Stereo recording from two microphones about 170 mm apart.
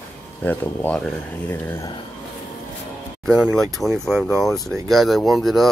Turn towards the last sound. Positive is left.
turn(degrees=0)  # may be behind; listen again after turning